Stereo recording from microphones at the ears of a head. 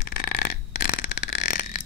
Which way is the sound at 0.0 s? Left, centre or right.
Left.